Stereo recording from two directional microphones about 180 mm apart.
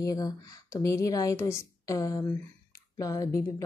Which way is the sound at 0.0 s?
20° left (ahead or behind).